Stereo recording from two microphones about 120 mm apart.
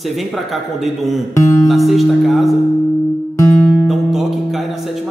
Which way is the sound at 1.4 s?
25° left (ahead or behind).